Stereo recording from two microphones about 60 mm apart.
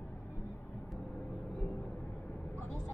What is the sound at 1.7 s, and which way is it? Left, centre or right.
Vehicle, left.